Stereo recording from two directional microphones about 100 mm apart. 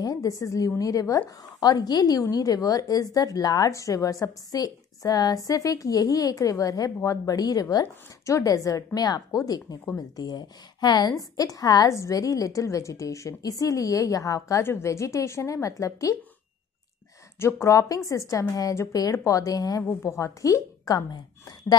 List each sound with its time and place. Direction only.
0.0 s a woman's voice: 35° left (ahead or behind)
17.4 s a woman's voice: 25° left (ahead or behind); by 21.7 s 45° left (ahead or behind)